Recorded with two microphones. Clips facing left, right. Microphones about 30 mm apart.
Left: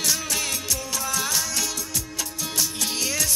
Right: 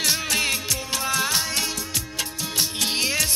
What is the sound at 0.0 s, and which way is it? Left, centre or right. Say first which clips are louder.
Music: right 3 dB; right.